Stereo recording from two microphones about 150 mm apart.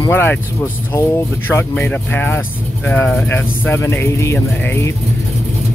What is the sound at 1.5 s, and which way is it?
Speech, 10° left (ahead or behind).